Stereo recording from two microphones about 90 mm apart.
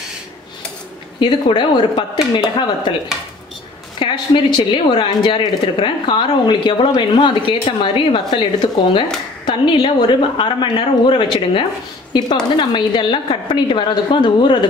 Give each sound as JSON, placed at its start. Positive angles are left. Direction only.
{"t": 1.2, "sound": "speech", "side_deg": 65}
{"t": 4.0, "sound": "speech", "side_deg": 60}
{"t": 12.1, "sound": "speech", "side_deg": 55}